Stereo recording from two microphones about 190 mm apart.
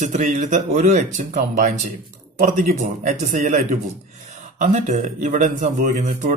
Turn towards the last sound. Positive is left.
turn(degrees=-40)  # may be behind; listen again after turning